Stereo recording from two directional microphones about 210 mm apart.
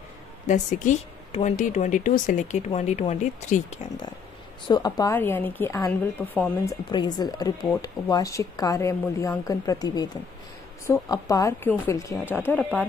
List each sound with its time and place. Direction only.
0.5 s speech: 35° left (ahead or behind)
4.6 s a woman's voice: 20° left (ahead or behind)